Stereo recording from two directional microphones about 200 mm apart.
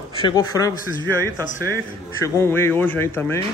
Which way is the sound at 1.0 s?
15° right (ahead or behind).